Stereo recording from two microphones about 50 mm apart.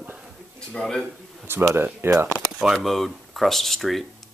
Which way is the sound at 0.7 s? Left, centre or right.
Centre.